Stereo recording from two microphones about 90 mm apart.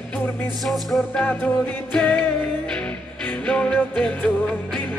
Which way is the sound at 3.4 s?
10° left (ahead or behind).